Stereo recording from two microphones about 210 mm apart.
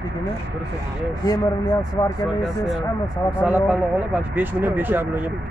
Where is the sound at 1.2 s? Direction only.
20° left (ahead or behind).